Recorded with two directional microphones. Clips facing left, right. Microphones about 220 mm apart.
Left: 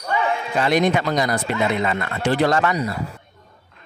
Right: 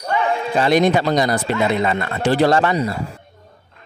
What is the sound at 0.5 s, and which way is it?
Speech, 30° right (ahead or behind).